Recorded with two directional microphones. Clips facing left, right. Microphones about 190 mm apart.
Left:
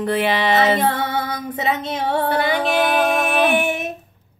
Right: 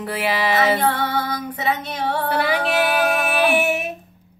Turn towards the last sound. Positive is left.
turn(degrees=-10)  # may be behind; listen again after turning